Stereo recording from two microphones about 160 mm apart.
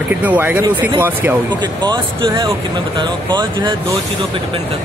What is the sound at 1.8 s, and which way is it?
Speech, 25° right (ahead or behind).